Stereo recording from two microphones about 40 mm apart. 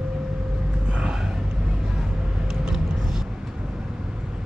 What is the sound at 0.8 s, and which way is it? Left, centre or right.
Gasp, right.